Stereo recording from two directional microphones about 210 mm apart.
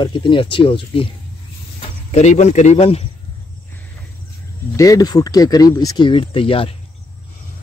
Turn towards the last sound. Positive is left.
turn(degrees=25)  # may be behind; listen again after turning